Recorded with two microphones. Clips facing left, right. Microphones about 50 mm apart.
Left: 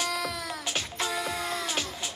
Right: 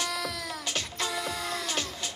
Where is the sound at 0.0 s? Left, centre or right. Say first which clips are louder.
Left 2 dB; centre.